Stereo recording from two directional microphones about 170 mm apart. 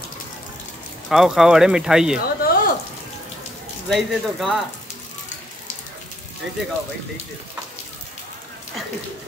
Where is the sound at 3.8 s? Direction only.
Centre (ahead or behind).